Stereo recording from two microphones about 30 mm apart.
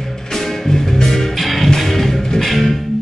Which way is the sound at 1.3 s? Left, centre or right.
Centre.